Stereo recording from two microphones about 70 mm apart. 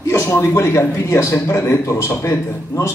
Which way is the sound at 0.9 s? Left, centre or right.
Left.